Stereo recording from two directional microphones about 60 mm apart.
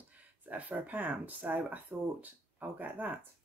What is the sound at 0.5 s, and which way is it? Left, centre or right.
Speech, right.